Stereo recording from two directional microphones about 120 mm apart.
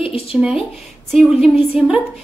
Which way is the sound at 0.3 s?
10° right (ahead or behind).